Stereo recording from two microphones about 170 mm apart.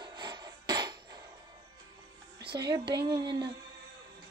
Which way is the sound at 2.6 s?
25° right (ahead or behind).